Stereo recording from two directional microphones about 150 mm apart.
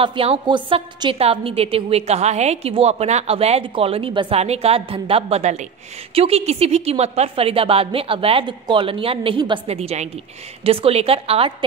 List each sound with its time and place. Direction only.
0.0 s a woman's voice: 35° right (ahead or behind)